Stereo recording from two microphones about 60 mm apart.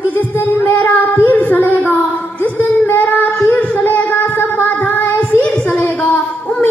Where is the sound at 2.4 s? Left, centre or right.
Left.